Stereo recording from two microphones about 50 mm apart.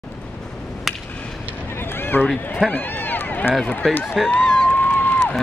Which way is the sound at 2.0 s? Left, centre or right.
Left.